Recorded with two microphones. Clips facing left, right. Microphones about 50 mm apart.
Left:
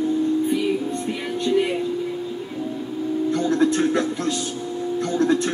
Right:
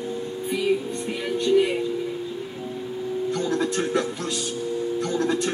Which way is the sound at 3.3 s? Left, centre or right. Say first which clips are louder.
Left 6 dB; left.